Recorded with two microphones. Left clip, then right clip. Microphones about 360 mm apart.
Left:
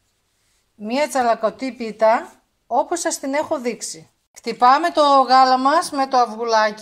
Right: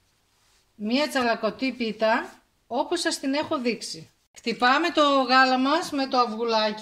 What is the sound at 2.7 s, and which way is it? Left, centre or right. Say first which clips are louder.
Speech: left 7 dB; centre.